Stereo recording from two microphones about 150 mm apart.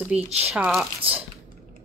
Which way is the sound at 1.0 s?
40° right (ahead or behind).